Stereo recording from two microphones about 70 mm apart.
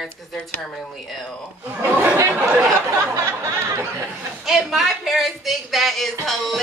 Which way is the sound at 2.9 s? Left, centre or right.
Right.